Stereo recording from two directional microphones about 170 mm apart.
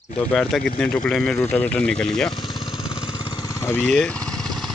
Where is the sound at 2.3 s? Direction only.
25° left (ahead or behind).